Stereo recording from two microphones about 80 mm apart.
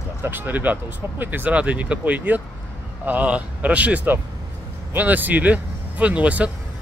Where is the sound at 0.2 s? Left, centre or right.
Right.